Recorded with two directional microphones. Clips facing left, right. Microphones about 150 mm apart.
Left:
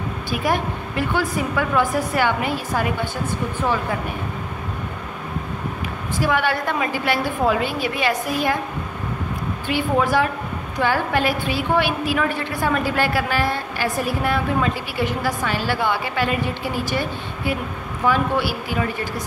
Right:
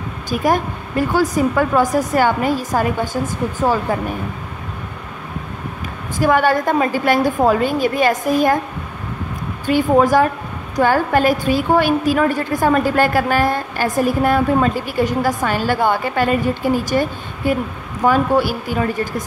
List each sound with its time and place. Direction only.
0.3 s a woman's voice: 40° right (ahead or behind)
6.1 s a woman's voice: 45° right (ahead or behind)
9.7 s a woman's voice: 45° right (ahead or behind)